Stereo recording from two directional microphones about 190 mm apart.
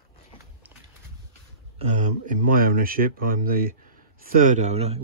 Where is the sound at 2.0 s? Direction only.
45° right (ahead or behind).